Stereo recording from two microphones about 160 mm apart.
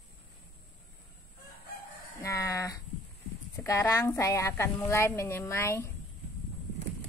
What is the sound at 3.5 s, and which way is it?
Speech, 20° left (ahead or behind).